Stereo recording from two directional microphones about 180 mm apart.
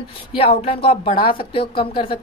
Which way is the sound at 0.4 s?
30° left (ahead or behind).